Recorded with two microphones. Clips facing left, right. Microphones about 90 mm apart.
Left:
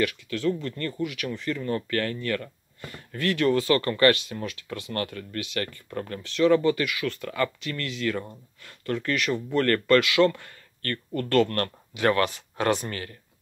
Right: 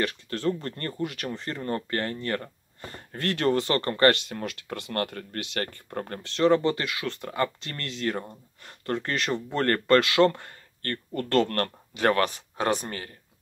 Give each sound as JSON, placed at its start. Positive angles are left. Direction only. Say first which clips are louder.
{"t": 0.0, "sound": "speech", "louder": "left 2 dB", "side_deg": -35}